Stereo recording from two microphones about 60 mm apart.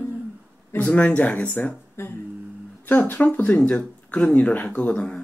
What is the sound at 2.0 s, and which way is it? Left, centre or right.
Speech, left.